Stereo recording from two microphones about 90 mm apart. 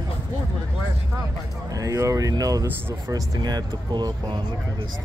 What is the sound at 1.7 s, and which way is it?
Speech, 35° right (ahead or behind).